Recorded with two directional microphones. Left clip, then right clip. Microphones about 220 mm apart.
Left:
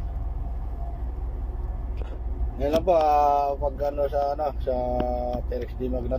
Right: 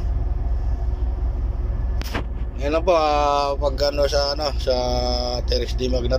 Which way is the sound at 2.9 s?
5° right (ahead or behind).